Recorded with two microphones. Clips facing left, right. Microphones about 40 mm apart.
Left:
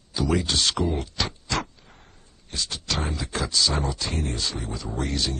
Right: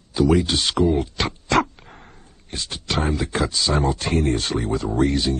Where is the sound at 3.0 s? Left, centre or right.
Right.